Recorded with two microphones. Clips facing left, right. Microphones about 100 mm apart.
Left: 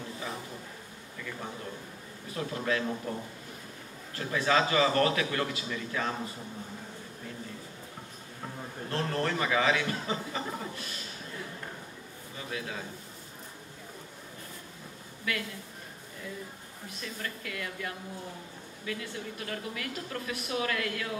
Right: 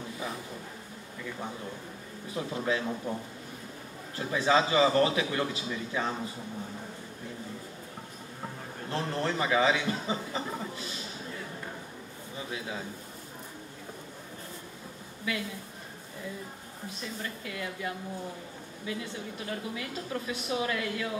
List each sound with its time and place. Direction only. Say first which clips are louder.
2.3 s a man's voice: right 1 dB; 15° right (ahead or behind)
4.2 s a man's voice: right 1 dB; 20° right (ahead or behind)
8.9 s a man's voice: even; 20° right (ahead or behind)
12.4 s a man's voice: left 1 dB; 20° right (ahead or behind)
17.0 s a woman's voice: even; 20° right (ahead or behind)